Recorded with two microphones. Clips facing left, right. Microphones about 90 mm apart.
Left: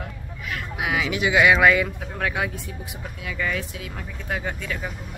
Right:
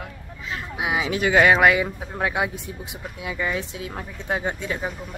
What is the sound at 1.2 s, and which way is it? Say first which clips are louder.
Speech: right 1 dB; 40° right (ahead or behind).